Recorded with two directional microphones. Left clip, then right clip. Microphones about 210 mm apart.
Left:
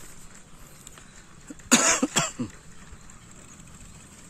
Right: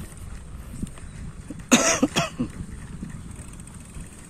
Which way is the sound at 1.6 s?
10° left (ahead or behind).